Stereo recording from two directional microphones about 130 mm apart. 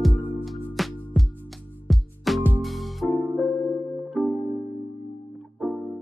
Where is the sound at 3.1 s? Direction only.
20° left (ahead or behind).